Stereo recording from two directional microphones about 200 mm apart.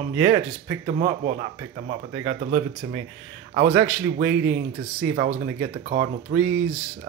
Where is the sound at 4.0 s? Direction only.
50° right (ahead or behind).